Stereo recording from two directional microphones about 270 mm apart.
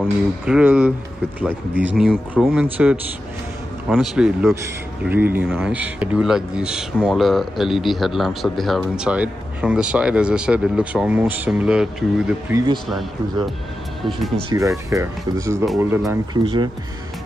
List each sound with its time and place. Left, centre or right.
0.0 s speech: centre
14.5 s speech: centre